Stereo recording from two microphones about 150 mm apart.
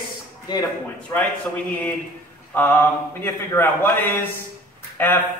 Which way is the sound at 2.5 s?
15° left (ahead or behind).